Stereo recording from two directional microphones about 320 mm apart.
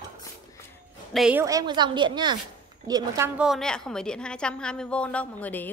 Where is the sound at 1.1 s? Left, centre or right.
Centre.